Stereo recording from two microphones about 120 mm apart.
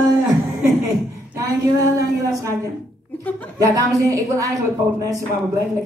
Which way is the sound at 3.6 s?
30° right (ahead or behind).